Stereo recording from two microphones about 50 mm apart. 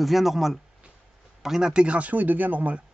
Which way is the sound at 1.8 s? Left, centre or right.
Right.